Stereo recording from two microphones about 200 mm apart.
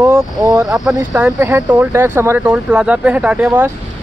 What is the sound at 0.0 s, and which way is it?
Speech, 15° right (ahead or behind).